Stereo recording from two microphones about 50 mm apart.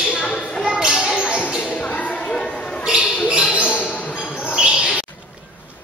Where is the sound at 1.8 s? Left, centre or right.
Left.